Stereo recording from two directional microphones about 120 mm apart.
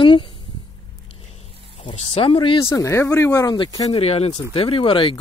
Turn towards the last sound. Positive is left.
turn(degrees=45)  # may be behind; listen again after turning